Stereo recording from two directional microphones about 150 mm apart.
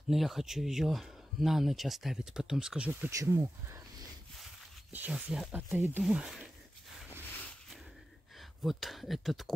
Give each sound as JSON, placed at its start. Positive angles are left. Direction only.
{"t": 0.1, "sound": "speech", "side_deg": 0}
{"t": 3.1, "sound": "speech", "side_deg": -20}
{"t": 4.9, "sound": "speech", "side_deg": -10}
{"t": 8.4, "sound": "speech", "side_deg": 0}